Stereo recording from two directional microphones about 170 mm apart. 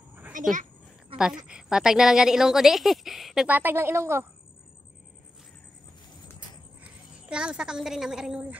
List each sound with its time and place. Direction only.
0.3 s a child's voice: 50° right (ahead or behind)
1.5 s a woman's voice: 5° right (ahead or behind)
6.8 s a woman's voice: 5° right (ahead or behind)